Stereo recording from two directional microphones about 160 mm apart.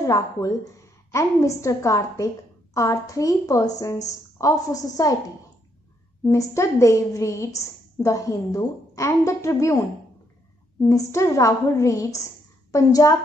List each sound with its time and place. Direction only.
0.0 s a woman's voice: 20° left (ahead or behind)
6.2 s a woman's voice: 20° left (ahead or behind)